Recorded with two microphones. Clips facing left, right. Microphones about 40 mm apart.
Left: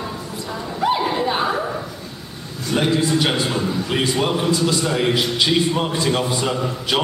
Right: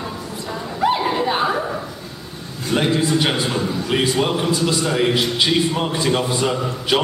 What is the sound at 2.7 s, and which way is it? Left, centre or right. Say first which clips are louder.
A man's voice: even; centre.